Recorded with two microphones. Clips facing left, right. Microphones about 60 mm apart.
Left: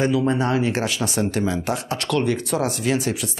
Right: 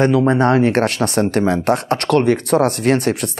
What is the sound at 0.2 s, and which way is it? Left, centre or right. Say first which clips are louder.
Speech: right 7 dB; right.